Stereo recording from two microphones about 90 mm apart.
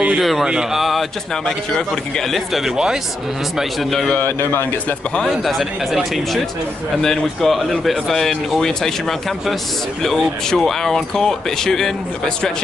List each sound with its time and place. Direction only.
0.2 s speech: centre (ahead or behind)
4.2 s a man's voice: 25° left (ahead or behind)
5.4 s speech: centre (ahead or behind)
10.0 s speech: 5° left (ahead or behind)